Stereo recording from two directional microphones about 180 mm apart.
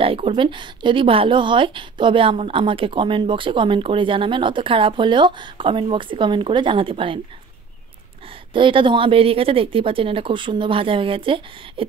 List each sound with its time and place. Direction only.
0.0 s a woman's voice: 30° right (ahead or behind)
8.5 s a woman's voice: 30° right (ahead or behind)